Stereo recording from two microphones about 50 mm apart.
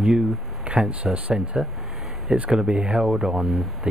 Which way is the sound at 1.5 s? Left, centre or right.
Centre.